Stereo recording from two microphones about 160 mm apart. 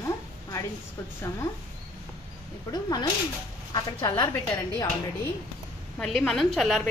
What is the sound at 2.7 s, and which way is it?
A woman's voice, 25° left (ahead or behind).